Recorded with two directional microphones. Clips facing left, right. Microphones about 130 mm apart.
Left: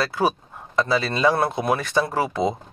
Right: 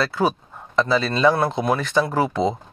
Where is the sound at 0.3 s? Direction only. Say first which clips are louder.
Even; 15° left (ahead or behind).